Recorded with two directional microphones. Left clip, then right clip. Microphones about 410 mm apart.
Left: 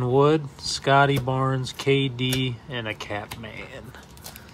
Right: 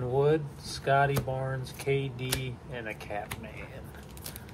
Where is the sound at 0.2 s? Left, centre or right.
Centre.